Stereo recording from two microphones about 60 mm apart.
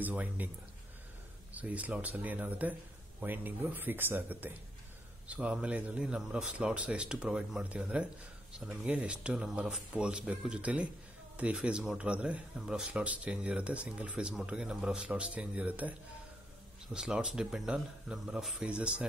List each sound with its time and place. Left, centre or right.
0.0 s speech: right
1.5 s speech: right
5.3 s speech: right
16.9 s speech: centre
18.6 s speech: centre